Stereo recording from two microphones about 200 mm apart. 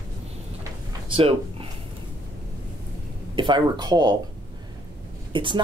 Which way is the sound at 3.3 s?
25° right (ahead or behind).